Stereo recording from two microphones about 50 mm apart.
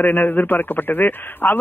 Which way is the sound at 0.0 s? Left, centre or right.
Left.